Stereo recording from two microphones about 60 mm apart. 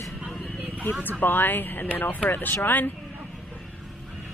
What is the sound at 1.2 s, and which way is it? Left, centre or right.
Speech, left.